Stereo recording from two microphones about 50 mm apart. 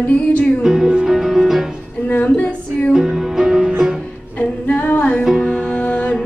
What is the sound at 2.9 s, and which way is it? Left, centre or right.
Music, centre.